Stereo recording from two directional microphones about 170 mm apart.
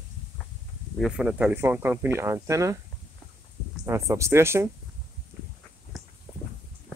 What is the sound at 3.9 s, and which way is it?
Speech, 15° right (ahead or behind).